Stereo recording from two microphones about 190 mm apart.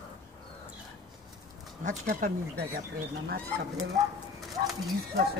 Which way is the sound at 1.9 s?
45° right (ahead or behind).